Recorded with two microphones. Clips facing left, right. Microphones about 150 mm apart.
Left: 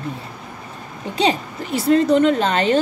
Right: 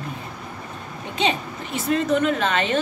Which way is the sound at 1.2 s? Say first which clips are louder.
Left 4 dB; 35° left (ahead or behind).